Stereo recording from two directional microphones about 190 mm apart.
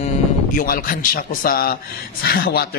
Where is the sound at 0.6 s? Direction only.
50° left (ahead or behind).